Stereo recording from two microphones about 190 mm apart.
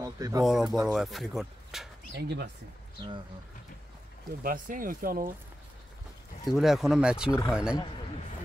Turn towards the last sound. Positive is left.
turn(degrees=-5)  # may be behind; listen again after turning